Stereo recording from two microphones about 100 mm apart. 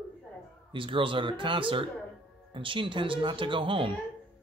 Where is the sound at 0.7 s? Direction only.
60° right (ahead or behind).